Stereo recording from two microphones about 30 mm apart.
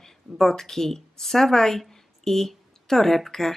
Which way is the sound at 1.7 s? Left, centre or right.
Centre.